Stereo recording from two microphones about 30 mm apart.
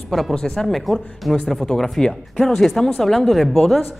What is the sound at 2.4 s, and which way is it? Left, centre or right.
Speech, centre.